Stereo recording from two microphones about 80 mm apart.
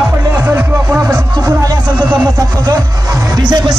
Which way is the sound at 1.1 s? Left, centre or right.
Right.